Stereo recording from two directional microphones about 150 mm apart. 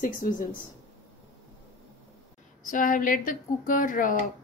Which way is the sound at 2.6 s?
65° left (ahead or behind).